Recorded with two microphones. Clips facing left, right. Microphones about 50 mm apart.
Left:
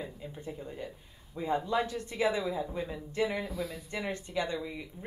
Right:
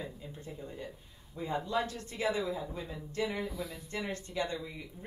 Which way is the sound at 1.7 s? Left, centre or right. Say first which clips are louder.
Left 3 dB; left.